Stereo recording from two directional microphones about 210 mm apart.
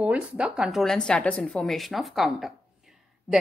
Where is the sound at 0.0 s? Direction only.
5° right (ahead or behind).